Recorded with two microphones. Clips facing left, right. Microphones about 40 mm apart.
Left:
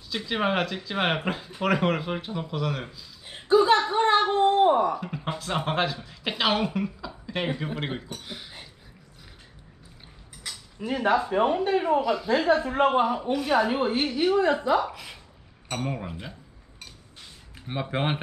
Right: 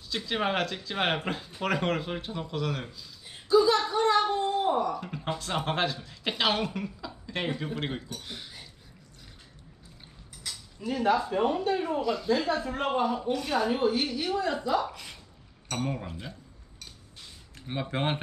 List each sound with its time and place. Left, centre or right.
0.1 s speech: centre
3.3 s a sound: left
3.8 s a sound: left
5.0 s speech: centre
10.8 s speech: left
12.0 s speech: centre
12.3 s speech: left
13.3 s speech: centre
13.7 s speech: left
14.9 s a woman's voice: centre
17.6 s speech: centre